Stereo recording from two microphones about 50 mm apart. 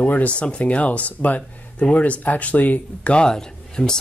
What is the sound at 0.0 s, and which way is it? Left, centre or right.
Speech, left.